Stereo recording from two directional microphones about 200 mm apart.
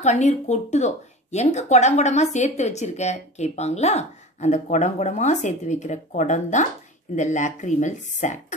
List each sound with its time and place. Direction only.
0.0 s speech: 35° left (ahead or behind)